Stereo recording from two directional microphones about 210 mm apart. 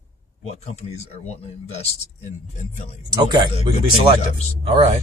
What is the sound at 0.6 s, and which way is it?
Speech, 30° left (ahead or behind).